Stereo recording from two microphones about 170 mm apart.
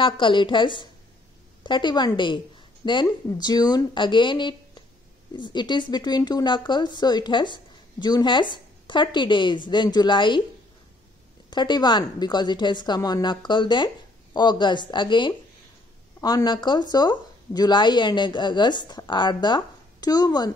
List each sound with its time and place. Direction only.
0.0 s speech: 30° left (ahead or behind)
11.5 s speech: 25° left (ahead or behind)